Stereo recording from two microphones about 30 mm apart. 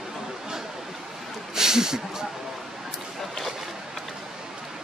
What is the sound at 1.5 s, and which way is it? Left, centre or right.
Speech, centre.